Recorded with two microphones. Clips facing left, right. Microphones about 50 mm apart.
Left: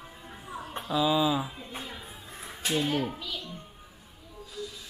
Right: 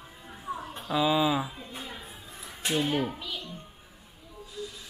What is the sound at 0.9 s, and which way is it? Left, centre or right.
Speech, centre.